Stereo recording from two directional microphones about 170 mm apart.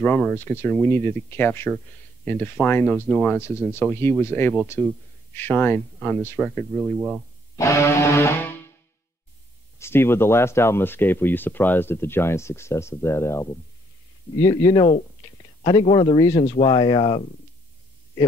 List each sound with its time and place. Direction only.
0.0 s speech: 10° left (ahead or behind)
7.5 s speech: 15° left (ahead or behind)
9.8 s speech: 15° left (ahead or behind)
14.7 s speech: 25° left (ahead or behind)